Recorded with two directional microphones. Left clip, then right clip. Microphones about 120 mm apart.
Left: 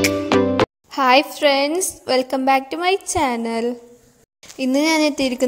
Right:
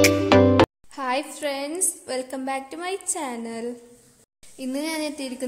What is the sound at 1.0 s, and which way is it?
A woman's voice, 40° left (ahead or behind).